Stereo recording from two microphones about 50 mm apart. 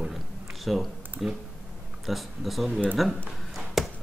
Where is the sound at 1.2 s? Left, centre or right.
Centre.